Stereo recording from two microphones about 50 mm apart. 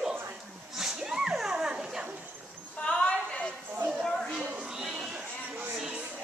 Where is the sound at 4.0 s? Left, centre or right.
Centre.